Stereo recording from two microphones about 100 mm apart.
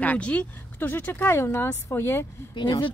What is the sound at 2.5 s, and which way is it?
Speech, 55° left (ahead or behind).